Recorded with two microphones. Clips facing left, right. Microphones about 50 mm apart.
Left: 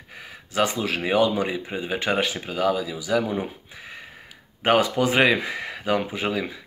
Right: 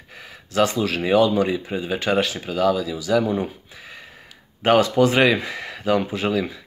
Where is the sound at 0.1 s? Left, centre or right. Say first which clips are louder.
Right 3 dB; centre.